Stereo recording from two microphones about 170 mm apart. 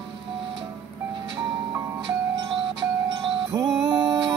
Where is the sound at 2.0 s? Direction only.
30° right (ahead or behind).